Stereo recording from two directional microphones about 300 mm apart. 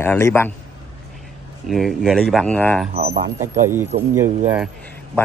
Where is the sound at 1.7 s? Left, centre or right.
Centre.